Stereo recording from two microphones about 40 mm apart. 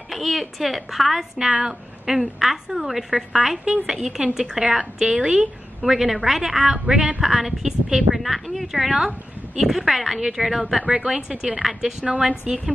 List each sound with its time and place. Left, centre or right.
0.1 s a woman's voice: centre
3.6 s a woman's voice: right
6.9 s speech: right
7.2 s a woman's voice: centre
8.2 s a woman's voice: centre
10.9 s a woman's voice: centre
12.2 s a woman's voice: right